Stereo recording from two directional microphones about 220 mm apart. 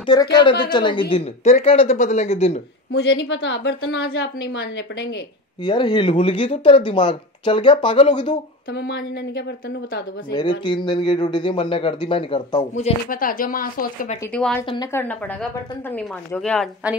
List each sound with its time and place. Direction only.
0.0 s speech: 20° left (ahead or behind)
2.9 s a woman's voice: 55° left (ahead or behind)
5.6 s speech: 20° left (ahead or behind)
8.7 s a woman's voice: 50° left (ahead or behind)
10.6 s speech: 20° left (ahead or behind)
13.1 s speech: 40° left (ahead or behind)
14.3 s a woman's voice: 5° left (ahead or behind)